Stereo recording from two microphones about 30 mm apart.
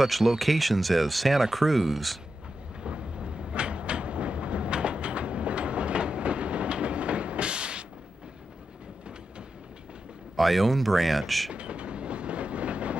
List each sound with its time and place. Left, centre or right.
0.0 s speech: centre
2.8 s train: right
10.3 s speech: centre
11.5 s train: right